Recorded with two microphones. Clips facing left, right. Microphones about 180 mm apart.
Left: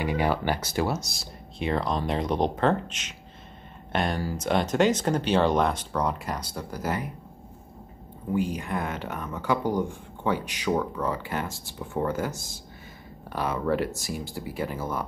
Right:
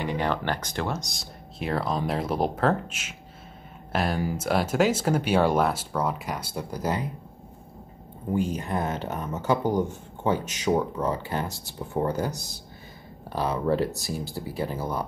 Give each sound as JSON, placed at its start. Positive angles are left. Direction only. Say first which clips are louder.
{"t": 0.0, "sound": "a sound", "louder": "left 1 dB", "side_deg": 10}
{"t": 0.5, "sound": "speech", "louder": "left 2 dB", "side_deg": 5}
{"t": 6.5, "sound": "speech", "louder": "right 3 dB", "side_deg": -15}
{"t": 8.5, "sound": "speech", "louder": "right 2 dB", "side_deg": -40}
{"t": 10.3, "sound": "speech", "louder": "right 2 dB", "side_deg": -45}
{"t": 10.8, "sound": "speech", "louder": "right 2 dB", "side_deg": -20}
{"t": 11.2, "sound": "speech", "louder": "right 1 dB", "side_deg": -35}